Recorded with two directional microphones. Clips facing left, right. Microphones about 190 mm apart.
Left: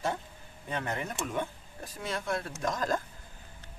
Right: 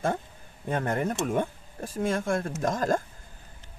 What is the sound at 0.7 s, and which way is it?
A man's voice, 50° right (ahead or behind).